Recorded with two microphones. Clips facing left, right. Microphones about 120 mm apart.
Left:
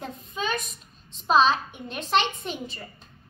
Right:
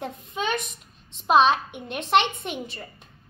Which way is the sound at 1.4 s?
65° right (ahead or behind).